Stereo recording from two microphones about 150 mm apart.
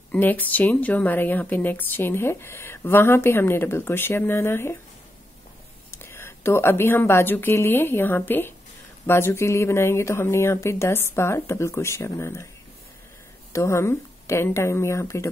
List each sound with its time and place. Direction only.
0.1 s speech: 10° left (ahead or behind)
5.9 s a woman's voice: 15° left (ahead or behind)
13.5 s speech: 20° left (ahead or behind)